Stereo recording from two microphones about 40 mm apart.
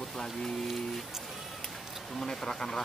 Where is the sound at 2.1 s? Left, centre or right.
Centre.